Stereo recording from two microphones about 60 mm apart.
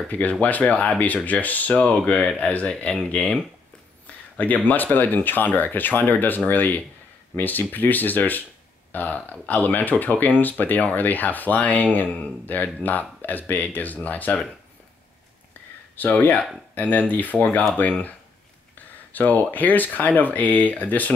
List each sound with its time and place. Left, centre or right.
0.1 s speech: left
4.6 s speech: left
16.0 s speech: left
19.1 s speech: left